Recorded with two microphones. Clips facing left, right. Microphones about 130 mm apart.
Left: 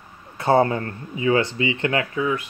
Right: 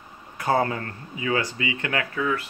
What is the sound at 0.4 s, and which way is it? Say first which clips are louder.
Speech: left 5 dB; 30° left (ahead or behind).